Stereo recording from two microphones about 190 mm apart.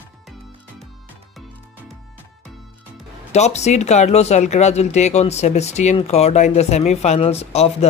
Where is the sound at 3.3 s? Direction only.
35° left (ahead or behind).